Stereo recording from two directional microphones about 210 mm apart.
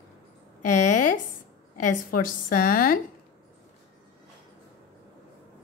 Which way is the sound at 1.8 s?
40° left (ahead or behind).